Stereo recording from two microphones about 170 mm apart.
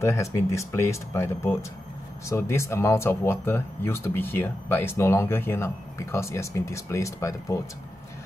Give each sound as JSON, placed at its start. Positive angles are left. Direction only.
{"t": 0.0, "sound": "speech", "side_deg": 15}